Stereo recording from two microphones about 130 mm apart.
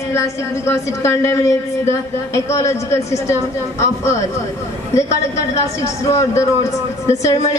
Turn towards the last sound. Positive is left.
turn(degrees=20)  # may be behind; listen again after turning